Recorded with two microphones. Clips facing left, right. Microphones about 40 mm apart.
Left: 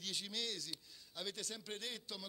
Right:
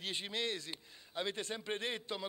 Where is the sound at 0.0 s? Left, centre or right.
Right.